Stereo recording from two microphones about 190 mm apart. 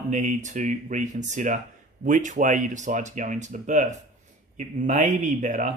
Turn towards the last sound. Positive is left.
turn(degrees=-40)  # may be behind; listen again after turning